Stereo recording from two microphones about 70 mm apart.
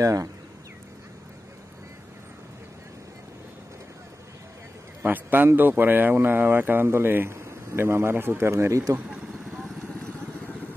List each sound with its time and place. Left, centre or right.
0.0 s speech: right
5.0 s a man's voice: right
9.5 s vehicle: centre